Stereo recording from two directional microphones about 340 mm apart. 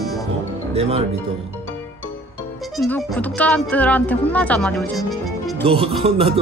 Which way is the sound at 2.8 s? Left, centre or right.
Centre.